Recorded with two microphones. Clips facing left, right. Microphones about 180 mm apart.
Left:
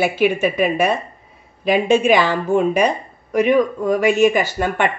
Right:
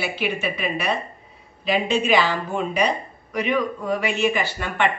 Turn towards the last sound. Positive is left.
turn(degrees=45)  # may be behind; listen again after turning